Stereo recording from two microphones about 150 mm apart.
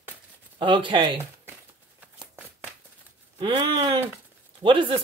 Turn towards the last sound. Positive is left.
turn(degrees=-35)  # may be behind; listen again after turning